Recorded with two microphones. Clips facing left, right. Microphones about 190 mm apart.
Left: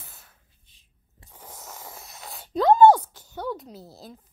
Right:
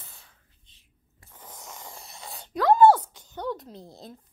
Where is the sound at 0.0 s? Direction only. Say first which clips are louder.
Left 1 dB; centre (ahead or behind).